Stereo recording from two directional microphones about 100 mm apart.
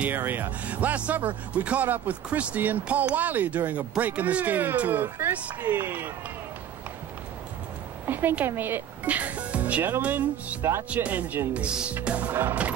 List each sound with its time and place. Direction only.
0.0 s speech: 20° right (ahead or behind)
8.1 s speech: 20° right (ahead or behind)